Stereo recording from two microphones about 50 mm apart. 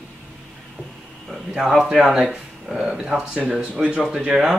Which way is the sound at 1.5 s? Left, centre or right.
Centre.